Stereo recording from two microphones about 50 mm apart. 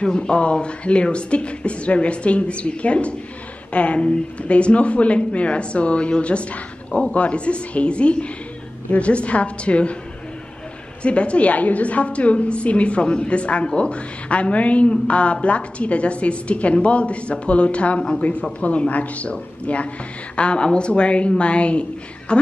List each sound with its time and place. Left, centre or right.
0.0 s speech: centre
11.0 s speech: left